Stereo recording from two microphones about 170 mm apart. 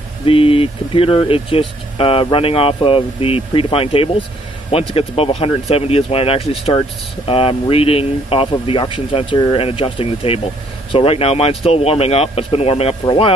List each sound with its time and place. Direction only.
0.2 s speech: 35° left (ahead or behind)